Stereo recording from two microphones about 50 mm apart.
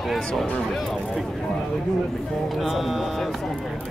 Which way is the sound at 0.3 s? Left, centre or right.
Centre.